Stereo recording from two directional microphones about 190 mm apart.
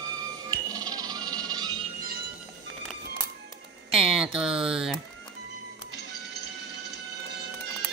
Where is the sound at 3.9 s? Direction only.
5° right (ahead or behind).